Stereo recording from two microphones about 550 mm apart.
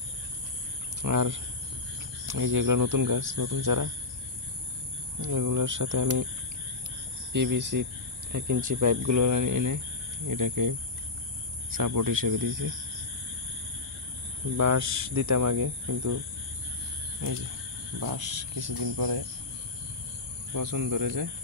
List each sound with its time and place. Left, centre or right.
1.0 s speech: right
5.2 s speech: right
7.7 s speech: right
14.6 s speech: right
18.0 s speech: right
20.5 s speech: right